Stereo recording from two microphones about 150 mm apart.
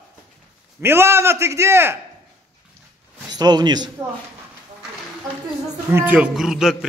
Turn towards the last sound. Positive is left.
turn(degrees=-5)  # may be behind; listen again after turning